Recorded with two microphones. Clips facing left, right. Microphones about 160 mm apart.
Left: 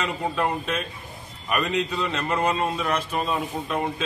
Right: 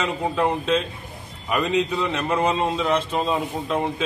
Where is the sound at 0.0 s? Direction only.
20° right (ahead or behind).